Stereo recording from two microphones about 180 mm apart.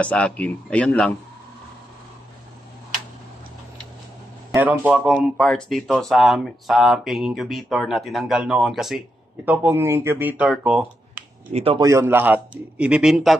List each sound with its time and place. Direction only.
0.0 s speech: 5° left (ahead or behind)
4.6 s speech: 10° right (ahead or behind)
9.5 s speech: 10° right (ahead or behind)
11.5 s a man's voice: 30° right (ahead or behind)
11.8 s speech: 15° right (ahead or behind)